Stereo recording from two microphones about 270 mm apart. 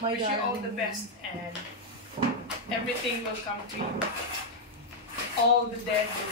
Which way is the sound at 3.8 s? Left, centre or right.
Right.